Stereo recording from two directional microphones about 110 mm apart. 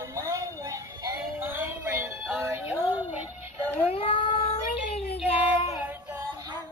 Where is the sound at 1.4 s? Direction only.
20° right (ahead or behind).